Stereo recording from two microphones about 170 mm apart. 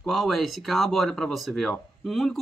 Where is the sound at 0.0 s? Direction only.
Centre (ahead or behind).